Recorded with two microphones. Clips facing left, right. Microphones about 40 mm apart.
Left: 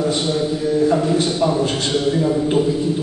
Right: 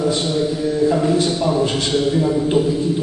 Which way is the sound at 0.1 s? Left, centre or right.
Left.